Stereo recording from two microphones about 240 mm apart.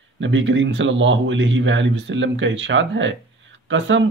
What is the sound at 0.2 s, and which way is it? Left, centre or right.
Speech, right.